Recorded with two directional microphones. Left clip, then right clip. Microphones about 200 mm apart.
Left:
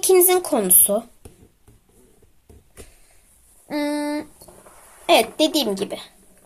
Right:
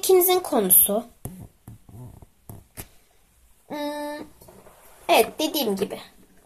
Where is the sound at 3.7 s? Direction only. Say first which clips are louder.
Left 6 dB; 35° left (ahead or behind).